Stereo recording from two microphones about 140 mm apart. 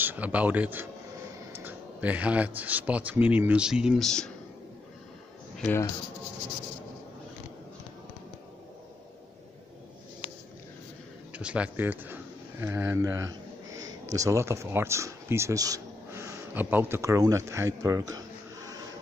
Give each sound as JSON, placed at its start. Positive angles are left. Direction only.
{"t": 0.0, "sound": "speech", "side_deg": -10}
{"t": 11.3, "sound": "a sound", "side_deg": -10}
{"t": 14.1, "sound": "speech", "side_deg": -20}